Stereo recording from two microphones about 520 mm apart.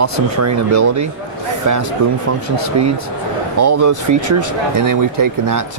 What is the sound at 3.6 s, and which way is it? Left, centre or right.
Speech, right.